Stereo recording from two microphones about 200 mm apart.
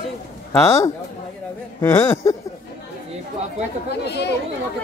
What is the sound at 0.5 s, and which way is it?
Speech, 15° left (ahead or behind).